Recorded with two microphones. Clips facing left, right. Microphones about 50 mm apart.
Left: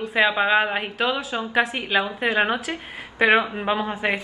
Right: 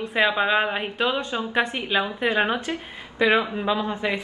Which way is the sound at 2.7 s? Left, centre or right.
Left.